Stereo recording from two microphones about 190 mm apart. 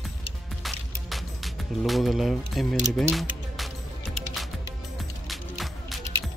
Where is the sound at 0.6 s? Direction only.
Centre (ahead or behind).